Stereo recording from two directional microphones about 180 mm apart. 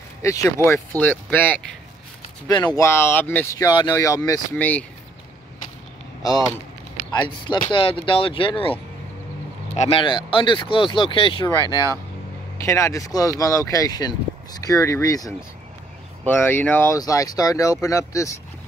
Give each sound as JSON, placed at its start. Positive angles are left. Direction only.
{"t": 0.2, "sound": "speech", "side_deg": 15}
{"t": 2.4, "sound": "speech", "side_deg": 20}
{"t": 4.6, "sound": "speech", "side_deg": 10}
{"t": 7.1, "sound": "speech", "side_deg": 25}
{"t": 9.8, "sound": "speech", "side_deg": 30}